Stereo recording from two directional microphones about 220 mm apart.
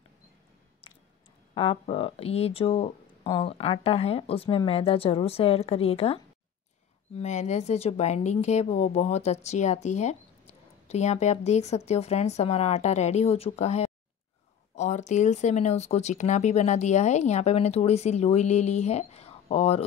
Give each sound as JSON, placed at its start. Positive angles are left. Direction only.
{"t": 1.5, "sound": "a woman's voice", "side_deg": 25}